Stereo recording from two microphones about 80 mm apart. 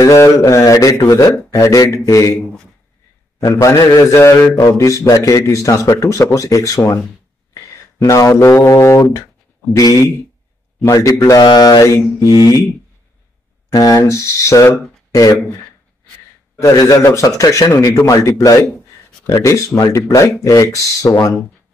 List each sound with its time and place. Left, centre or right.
0.0 s speech: left
3.3 s a man's voice: left
11.2 s mantra: left
11.8 s speech: left
13.7 s a man's voice: left
16.6 s a man's voice: left